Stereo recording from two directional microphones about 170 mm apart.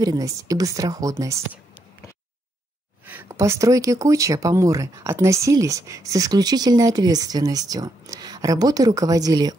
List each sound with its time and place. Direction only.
0.0 s speech: 20° right (ahead or behind)
3.1 s speech: 15° right (ahead or behind)